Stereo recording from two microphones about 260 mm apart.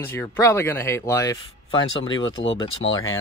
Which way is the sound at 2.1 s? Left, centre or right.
Left.